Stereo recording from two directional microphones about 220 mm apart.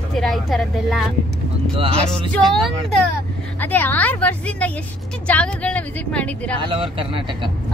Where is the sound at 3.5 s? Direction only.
10° left (ahead or behind).